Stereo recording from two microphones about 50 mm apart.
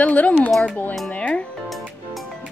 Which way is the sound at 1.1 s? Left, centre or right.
Left.